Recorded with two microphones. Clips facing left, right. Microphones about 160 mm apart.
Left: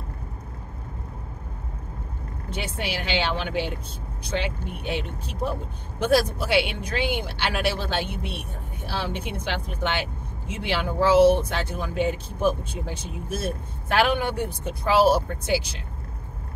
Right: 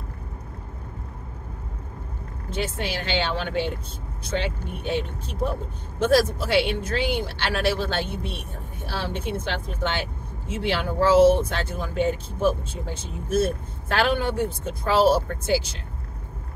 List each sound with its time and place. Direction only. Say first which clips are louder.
2.5 s speech: right 2 dB; 15° left (ahead or behind)
10.5 s speech: right 2 dB; 15° left (ahead or behind)